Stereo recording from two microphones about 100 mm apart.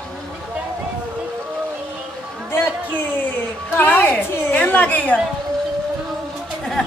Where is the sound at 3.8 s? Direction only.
15° left (ahead or behind).